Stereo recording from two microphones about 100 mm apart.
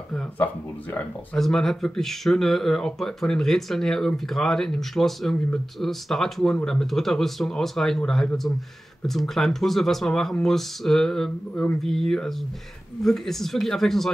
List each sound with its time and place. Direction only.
0.9 s speech: 5° left (ahead or behind)